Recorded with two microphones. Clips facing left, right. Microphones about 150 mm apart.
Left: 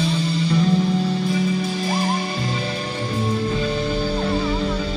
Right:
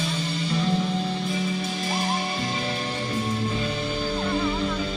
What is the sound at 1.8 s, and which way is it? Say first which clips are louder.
Music: left 4 dB; 40° left (ahead or behind).